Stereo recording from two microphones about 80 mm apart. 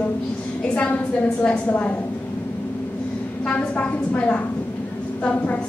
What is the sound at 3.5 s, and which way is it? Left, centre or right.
A woman's voice, centre.